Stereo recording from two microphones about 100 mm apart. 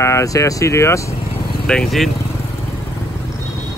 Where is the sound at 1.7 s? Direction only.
5° left (ahead or behind).